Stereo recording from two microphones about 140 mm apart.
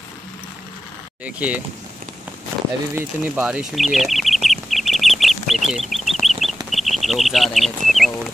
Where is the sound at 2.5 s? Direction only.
20° right (ahead or behind).